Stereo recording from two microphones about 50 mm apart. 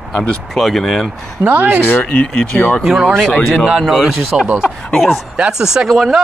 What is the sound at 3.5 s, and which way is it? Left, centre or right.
Speech, centre.